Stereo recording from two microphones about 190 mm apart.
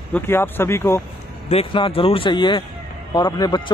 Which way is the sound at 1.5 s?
30° left (ahead or behind).